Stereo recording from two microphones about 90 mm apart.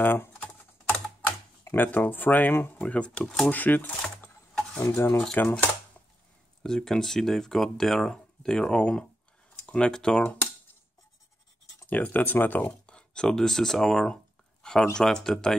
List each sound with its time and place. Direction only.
0.0 s typing: 20° left (ahead or behind)
1.2 s speech: 25° left (ahead or behind); by 3.5 s 10° left (ahead or behind)
3.5 s speech: 20° left (ahead or behind)
6.6 s speech: 5° left (ahead or behind)
11.9 s speech: 20° left (ahead or behind)
14.6 s a sound: 5° left (ahead or behind)
15.0 s speech: 5° left (ahead or behind)